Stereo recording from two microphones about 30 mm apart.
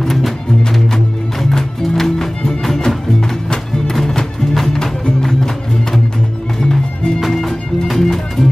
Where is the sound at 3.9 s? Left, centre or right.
Centre.